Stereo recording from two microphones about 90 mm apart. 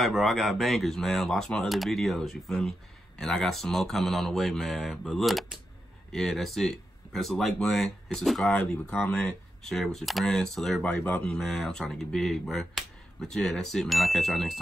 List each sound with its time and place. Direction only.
0.0 s speech: centre (ahead or behind)
8.9 s speech: 15° left (ahead or behind)
9.6 s speech: 5° left (ahead or behind)